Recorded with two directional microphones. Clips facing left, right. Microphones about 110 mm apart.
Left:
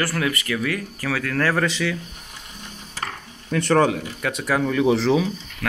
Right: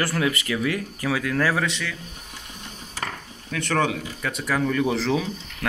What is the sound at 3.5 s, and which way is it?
Speech, 35° left (ahead or behind).